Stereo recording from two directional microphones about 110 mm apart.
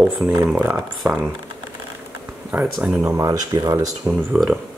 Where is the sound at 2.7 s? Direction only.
5° right (ahead or behind).